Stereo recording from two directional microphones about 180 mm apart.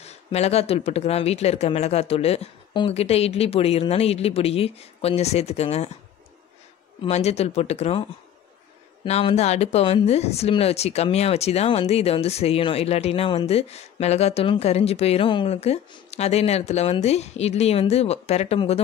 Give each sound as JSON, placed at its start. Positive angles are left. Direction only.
{"t": 0.0, "sound": "speech", "side_deg": 35}
{"t": 7.1, "sound": "speech", "side_deg": 35}